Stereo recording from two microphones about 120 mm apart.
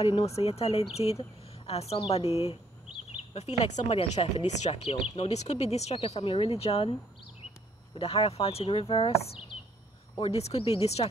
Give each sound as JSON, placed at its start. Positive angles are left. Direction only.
{"t": 0.0, "sound": "speech", "side_deg": 60}